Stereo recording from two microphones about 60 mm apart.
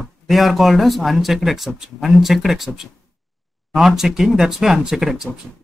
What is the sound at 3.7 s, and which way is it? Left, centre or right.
Speech, centre.